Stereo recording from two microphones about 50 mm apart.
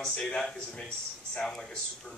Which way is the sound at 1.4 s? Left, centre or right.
Centre.